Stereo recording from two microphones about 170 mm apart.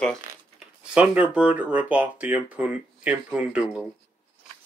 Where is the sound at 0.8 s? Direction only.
5° right (ahead or behind).